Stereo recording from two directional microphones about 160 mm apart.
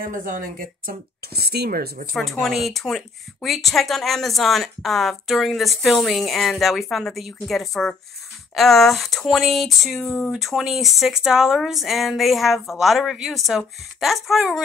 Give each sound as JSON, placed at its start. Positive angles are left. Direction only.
{"t": 0.0, "sound": "speech", "side_deg": -60}
{"t": 2.1, "sound": "speech", "side_deg": 0}